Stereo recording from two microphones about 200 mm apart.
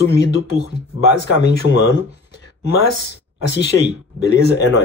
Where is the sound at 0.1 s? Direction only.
60° left (ahead or behind).